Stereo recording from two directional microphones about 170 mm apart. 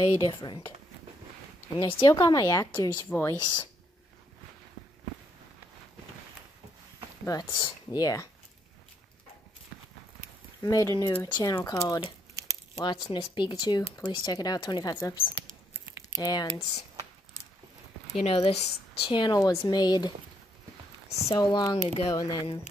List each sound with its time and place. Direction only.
0.0 s speech: 25° left (ahead or behind)
1.9 s speech: 30° left (ahead or behind)
2.1 s speech: 20° left (ahead or behind)
3.3 s speech: 25° left (ahead or behind)
7.2 s speech: 25° left (ahead or behind)
10.6 s speech: 20° left (ahead or behind)
16.2 s speech: 25° left (ahead or behind)
18.2 s speech: 35° left (ahead or behind)
19.4 s speech: 15° left (ahead or behind)
21.3 s speech: 25° left (ahead or behind)
21.8 s speech: 30° left (ahead or behind)